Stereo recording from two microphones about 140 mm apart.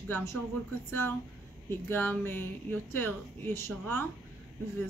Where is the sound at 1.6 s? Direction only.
15° left (ahead or behind).